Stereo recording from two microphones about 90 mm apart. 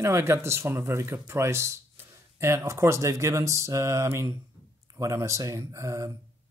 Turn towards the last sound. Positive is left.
turn(degrees=-35)  # may be behind; listen again after turning